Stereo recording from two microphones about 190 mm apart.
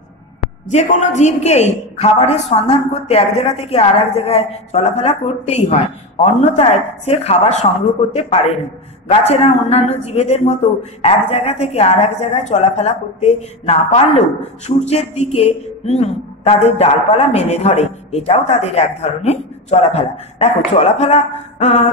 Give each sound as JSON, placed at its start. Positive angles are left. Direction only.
{"t": 0.7, "sound": "a woman's voice", "side_deg": 40}